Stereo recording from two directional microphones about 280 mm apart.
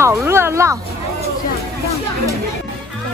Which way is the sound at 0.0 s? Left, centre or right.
Centre.